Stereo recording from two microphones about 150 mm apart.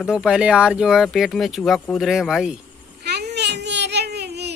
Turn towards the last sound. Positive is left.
turn(degrees=-90)